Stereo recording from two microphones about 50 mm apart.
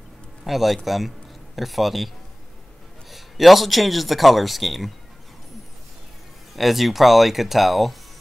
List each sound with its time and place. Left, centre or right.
0.4 s a man's voice: centre
3.1 s speech: centre
6.5 s speech: centre